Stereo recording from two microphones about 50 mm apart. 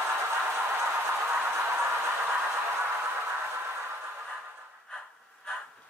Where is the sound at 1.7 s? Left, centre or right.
Right.